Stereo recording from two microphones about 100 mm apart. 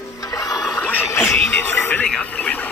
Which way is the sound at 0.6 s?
5° right (ahead or behind).